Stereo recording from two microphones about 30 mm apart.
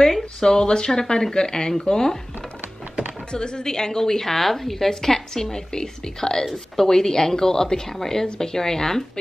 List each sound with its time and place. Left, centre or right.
0.2 s a woman's voice: left
3.3 s a woman's voice: left